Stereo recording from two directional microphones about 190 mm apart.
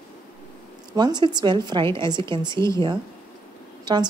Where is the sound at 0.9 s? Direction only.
20° right (ahead or behind).